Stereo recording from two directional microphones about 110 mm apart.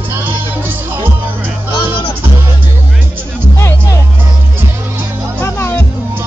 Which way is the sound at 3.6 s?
25° left (ahead or behind).